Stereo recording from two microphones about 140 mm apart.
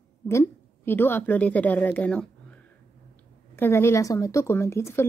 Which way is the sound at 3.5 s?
15° left (ahead or behind).